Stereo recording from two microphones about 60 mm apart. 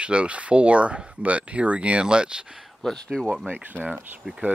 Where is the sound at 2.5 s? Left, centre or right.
Centre.